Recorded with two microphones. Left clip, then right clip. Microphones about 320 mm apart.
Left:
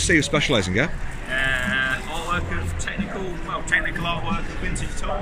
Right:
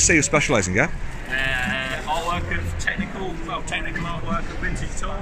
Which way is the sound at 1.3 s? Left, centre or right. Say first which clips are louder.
Left 1 dB; centre.